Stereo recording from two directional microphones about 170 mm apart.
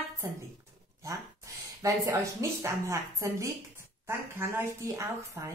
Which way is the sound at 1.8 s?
20° right (ahead or behind).